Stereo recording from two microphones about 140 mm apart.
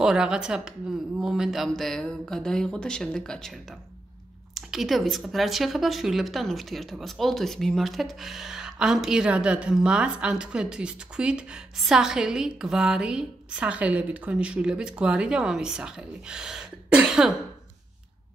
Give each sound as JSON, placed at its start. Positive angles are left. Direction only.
{"t": 0.0, "sound": "speech", "side_deg": -5}
{"t": 4.6, "sound": "speech", "side_deg": 0}